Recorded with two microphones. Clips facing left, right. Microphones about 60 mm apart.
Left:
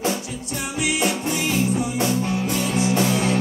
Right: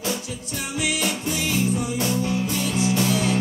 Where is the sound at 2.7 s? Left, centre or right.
Left.